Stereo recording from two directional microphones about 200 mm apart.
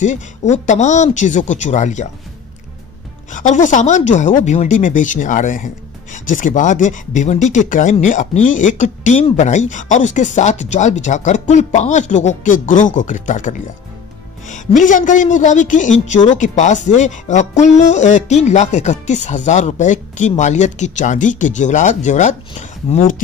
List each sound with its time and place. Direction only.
0.0 s speech: 35° left (ahead or behind)
3.3 s speech: 40° left (ahead or behind)